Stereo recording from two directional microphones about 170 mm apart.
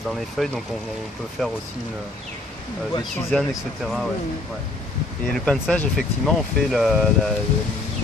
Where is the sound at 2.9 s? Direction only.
25° left (ahead or behind).